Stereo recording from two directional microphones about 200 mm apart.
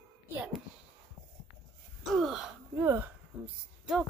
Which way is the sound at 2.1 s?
Centre (ahead or behind).